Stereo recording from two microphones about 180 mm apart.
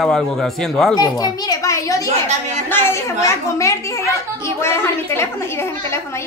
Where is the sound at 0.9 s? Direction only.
20° left (ahead or behind).